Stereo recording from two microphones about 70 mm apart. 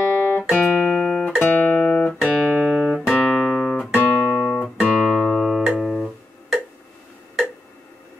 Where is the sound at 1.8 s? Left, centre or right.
Centre.